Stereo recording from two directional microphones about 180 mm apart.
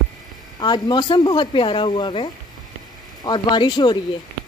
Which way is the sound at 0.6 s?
25° left (ahead or behind).